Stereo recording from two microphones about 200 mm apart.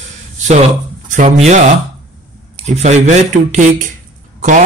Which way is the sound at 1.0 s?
40° right (ahead or behind).